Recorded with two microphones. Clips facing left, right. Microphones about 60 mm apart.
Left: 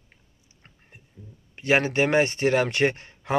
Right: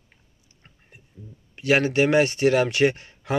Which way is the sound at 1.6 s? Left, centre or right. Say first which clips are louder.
Right 2 dB; left.